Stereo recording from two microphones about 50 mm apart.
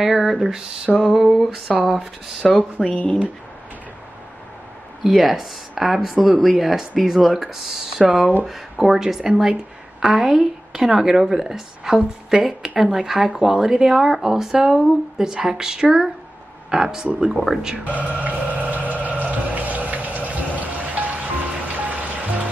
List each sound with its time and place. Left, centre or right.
0.0 s a woman's voice: centre
5.0 s a woman's voice: centre
17.8 s a sound: right
19.5 s music: right